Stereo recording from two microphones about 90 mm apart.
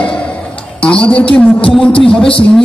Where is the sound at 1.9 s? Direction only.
80° left.